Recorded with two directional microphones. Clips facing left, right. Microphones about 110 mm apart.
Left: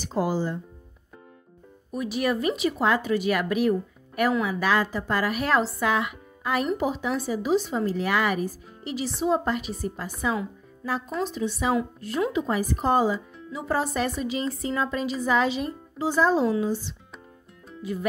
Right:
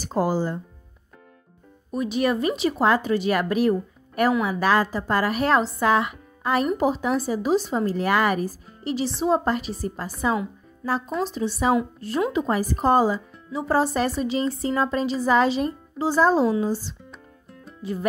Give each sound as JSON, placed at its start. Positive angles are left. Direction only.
{"t": 0.0, "sound": "speech", "side_deg": -40}
{"t": 1.9, "sound": "speech", "side_deg": -25}
{"t": 17.8, "sound": "music", "side_deg": -30}